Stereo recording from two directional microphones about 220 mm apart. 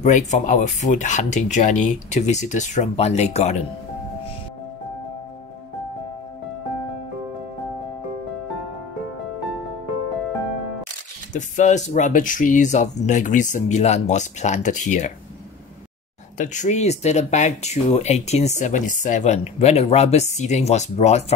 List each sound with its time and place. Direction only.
0.0 s speech: 35° left (ahead or behind)
11.3 s speech: 35° left (ahead or behind)
16.3 s speech: 35° left (ahead or behind)